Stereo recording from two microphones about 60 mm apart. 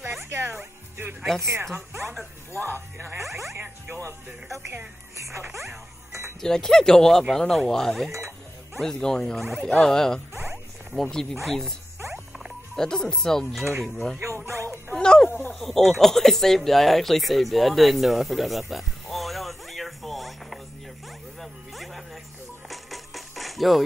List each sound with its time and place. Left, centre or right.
0.2 s music: right
2.5 s speech: left
3.3 s speech: centre
3.5 s speech: right
5.1 s speech: right
6.4 s speech: centre
9.4 s speech: centre
9.8 s speech: centre
12.7 s speech: centre
14.1 s dog: right
15.0 s a sound: centre
15.6 s speech: centre
21.4 s music: centre